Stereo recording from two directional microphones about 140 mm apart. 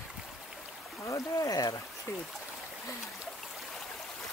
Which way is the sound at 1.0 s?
25° left (ahead or behind).